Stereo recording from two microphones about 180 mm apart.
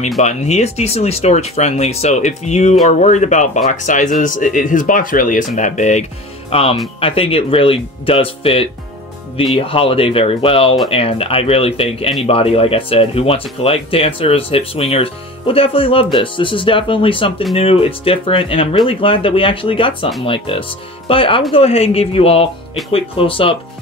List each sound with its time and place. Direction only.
0.2 s speech: 40° left (ahead or behind)